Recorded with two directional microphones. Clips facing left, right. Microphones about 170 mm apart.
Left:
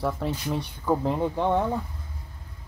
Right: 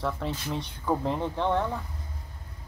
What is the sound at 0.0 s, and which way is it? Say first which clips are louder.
Speech: left 3 dB; 10° left (ahead or behind).